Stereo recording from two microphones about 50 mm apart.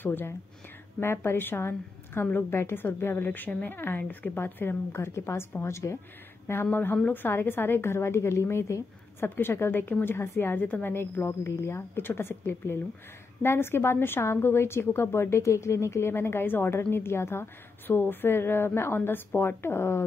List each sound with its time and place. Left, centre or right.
0.0 s a woman's voice: left
1.0 s a woman's voice: left
3.3 s a woman's voice: left
6.4 s a woman's voice: left
9.2 s a woman's voice: left